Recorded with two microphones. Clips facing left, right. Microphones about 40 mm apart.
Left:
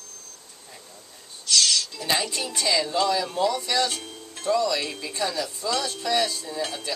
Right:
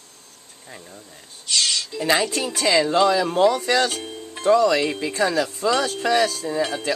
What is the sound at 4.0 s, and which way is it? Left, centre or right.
Music, right.